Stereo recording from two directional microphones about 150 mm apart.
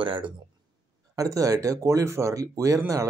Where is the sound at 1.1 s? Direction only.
20° right (ahead or behind).